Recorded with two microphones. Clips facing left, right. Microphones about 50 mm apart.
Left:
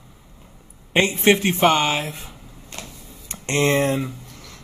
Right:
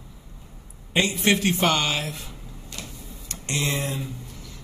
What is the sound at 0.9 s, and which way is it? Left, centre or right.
Speech, left.